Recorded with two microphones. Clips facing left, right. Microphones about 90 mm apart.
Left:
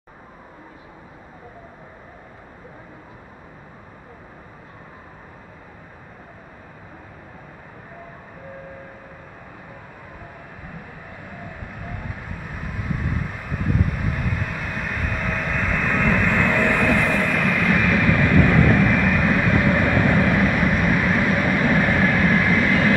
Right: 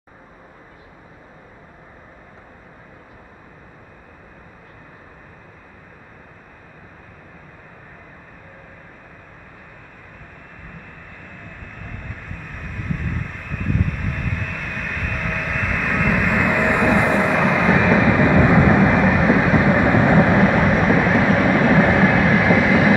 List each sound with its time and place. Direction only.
11.2 s vehicle: 5° left (ahead or behind); by 21.1 s 15° right (ahead or behind)
21.1 s vehicle: 5° right (ahead or behind)
22.1 s train: 5° right (ahead or behind)